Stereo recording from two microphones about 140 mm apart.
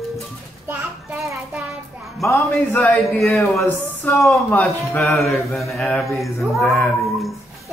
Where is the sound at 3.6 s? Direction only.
20° left (ahead or behind).